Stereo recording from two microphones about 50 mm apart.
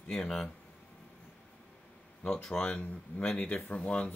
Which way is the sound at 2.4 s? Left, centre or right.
Left.